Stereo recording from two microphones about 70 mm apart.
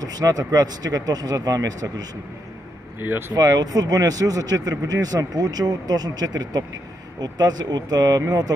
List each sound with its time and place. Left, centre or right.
0.0 s speech: right
3.0 s speech: right
3.3 s speech: right